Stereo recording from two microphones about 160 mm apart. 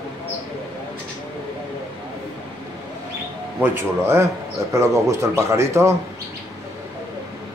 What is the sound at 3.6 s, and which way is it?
A man's voice, 15° right (ahead or behind).